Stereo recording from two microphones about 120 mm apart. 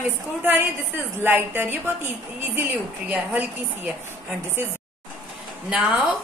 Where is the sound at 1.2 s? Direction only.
20° right (ahead or behind).